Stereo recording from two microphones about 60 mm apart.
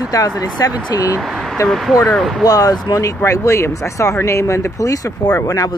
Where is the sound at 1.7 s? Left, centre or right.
Centre.